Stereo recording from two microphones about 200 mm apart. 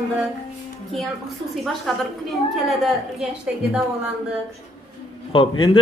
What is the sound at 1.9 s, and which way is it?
Speech, 5° left (ahead or behind).